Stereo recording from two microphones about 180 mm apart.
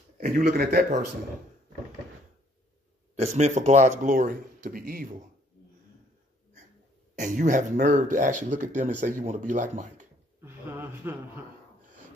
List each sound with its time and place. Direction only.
0.2 s speech: 55° right (ahead or behind)
3.2 s speech: 40° right (ahead or behind)
7.2 s speech: 45° right (ahead or behind)
10.4 s speech: 10° right (ahead or behind)